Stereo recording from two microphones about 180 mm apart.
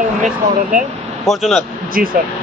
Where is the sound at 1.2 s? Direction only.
Centre (ahead or behind).